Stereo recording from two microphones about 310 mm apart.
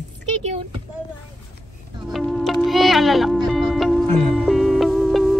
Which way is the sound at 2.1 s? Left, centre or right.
Centre.